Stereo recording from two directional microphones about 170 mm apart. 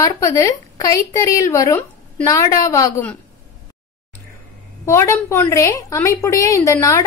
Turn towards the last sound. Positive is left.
turn(degrees=20)  # may be behind; listen again after turning